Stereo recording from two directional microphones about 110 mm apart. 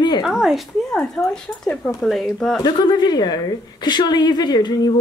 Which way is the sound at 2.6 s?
40° left (ahead or behind).